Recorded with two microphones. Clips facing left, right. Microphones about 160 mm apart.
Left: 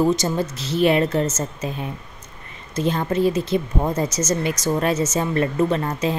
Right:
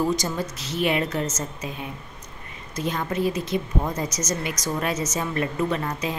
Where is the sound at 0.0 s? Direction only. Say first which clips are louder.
Left 5 dB; 25° left (ahead or behind).